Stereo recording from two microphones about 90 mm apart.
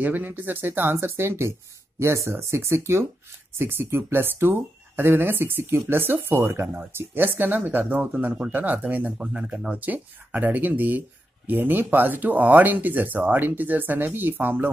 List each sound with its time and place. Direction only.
0.0 s speech: 20° right (ahead or behind)